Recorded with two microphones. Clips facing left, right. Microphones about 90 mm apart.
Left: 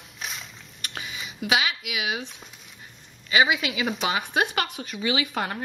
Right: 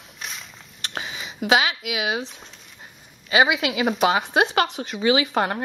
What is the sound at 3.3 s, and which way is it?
Speech, 30° right (ahead or behind).